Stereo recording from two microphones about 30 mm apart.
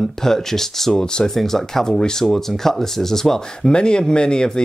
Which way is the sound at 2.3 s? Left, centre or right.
Centre.